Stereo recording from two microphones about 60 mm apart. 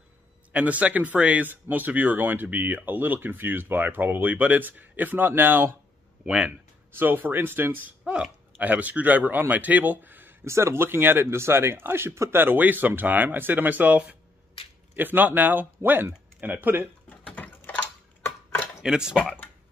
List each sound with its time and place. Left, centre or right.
0.5 s speech: right
6.2 s speech: centre
6.9 s speech: right
8.0 s speech: centre
8.5 s a man's voice: right
10.4 s speech: right
15.0 s speech: right
17.4 s typing: left
18.2 s a sound: left
18.8 s speech: centre